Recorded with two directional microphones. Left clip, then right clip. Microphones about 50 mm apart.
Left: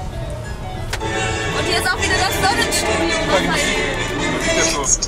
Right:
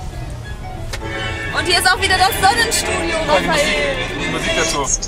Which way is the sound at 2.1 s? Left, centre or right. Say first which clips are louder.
Right 4 dB; left.